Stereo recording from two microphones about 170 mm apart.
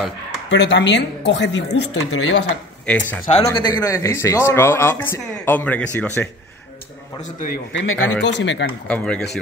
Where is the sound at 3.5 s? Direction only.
25° left (ahead or behind).